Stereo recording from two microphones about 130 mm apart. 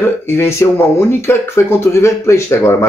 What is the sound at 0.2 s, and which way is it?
Speech, 20° left (ahead or behind).